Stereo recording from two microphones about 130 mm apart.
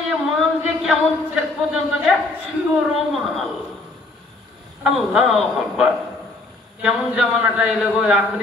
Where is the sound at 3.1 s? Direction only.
Centre (ahead or behind).